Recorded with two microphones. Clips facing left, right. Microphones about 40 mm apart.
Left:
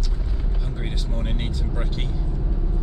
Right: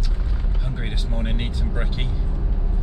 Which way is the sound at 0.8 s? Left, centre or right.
Centre.